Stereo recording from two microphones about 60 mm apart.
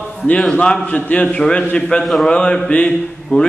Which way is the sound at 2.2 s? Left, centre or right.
Centre.